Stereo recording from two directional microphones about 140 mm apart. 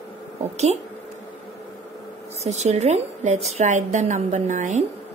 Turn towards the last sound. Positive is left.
turn(degrees=-55)  # may be behind; listen again after turning